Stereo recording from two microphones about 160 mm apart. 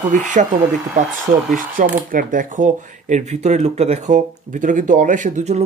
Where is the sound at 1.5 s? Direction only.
55° right (ahead or behind).